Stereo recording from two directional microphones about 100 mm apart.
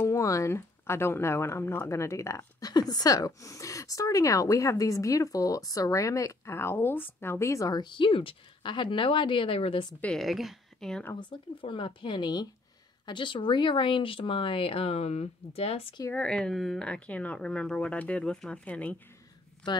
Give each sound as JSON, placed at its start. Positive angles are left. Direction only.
{"t": 0.0, "sound": "speech", "side_deg": 30}
{"t": 2.7, "sound": "speech", "side_deg": 40}
{"t": 7.8, "sound": "speech", "side_deg": 55}
{"t": 10.1, "sound": "a woman's voice", "side_deg": 0}
{"t": 11.1, "sound": "speech", "side_deg": 55}
{"t": 16.1, "sound": "speech", "side_deg": 10}